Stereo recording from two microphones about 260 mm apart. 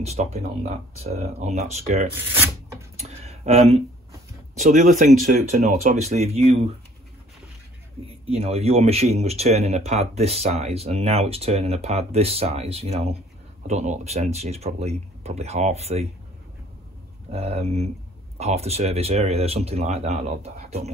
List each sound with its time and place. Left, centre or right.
0.0 s speech: right
2.1 s speech: centre
3.0 s speech: right
8.3 s speech: right
17.3 s speech: right